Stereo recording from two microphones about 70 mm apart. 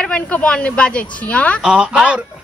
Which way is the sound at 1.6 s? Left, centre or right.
Centre.